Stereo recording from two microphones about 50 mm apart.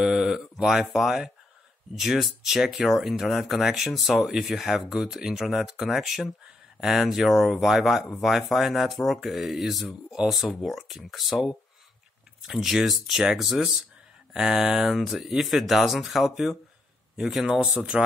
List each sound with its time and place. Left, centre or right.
0.0 s speech: centre
12.4 s speech: centre